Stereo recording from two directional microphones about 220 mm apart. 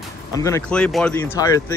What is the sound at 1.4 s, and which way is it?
Speech, 15° left (ahead or behind).